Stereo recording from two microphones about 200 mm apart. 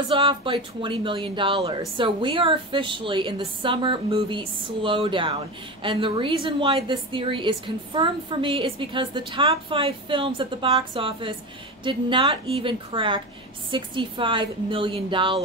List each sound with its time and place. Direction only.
0.1 s speech: 25° right (ahead or behind)